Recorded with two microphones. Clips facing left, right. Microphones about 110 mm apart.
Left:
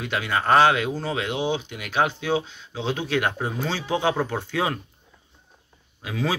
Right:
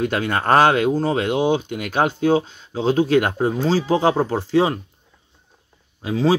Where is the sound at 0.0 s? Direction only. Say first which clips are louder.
Right 5 dB; 45° right (ahead or behind); by 4.7 s 30° right (ahead or behind).